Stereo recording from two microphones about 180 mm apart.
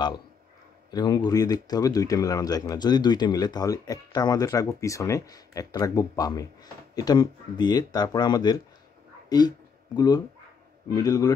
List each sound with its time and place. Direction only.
0.9 s speech: 20° left (ahead or behind)